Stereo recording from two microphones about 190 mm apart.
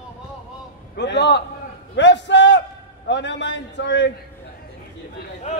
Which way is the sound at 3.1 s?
70° left (ahead or behind).